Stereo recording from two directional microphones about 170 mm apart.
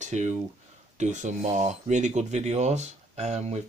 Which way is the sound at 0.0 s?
45° right (ahead or behind).